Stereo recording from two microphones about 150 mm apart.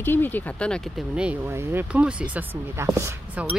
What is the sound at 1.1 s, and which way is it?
Speech, 10° right (ahead or behind).